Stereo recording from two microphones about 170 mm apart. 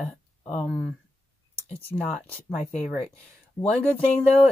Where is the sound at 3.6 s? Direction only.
10° left (ahead or behind).